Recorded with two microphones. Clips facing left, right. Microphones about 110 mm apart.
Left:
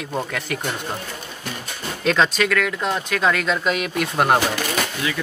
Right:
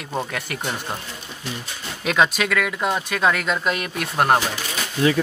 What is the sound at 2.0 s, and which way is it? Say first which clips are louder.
Speech: left 1 dB; 10° right (ahead or behind).